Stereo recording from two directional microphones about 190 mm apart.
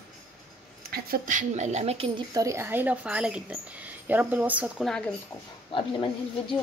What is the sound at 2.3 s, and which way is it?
A woman's voice, 15° right (ahead or behind).